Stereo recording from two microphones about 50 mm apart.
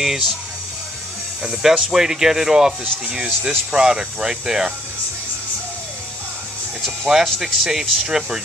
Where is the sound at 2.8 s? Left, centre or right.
Right.